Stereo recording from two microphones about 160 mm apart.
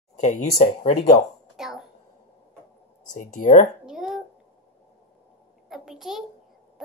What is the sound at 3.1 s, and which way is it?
Speech, 50° left (ahead or behind).